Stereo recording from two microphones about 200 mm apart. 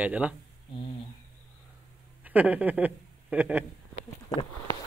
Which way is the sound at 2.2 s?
10° right (ahead or behind).